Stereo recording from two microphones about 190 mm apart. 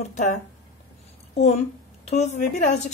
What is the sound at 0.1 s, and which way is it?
Speech, 40° left (ahead or behind).